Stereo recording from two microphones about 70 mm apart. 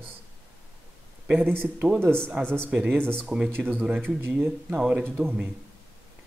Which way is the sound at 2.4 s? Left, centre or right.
Centre.